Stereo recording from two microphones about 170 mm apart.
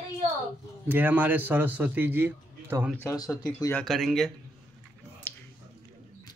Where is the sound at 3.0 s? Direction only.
20° left (ahead or behind).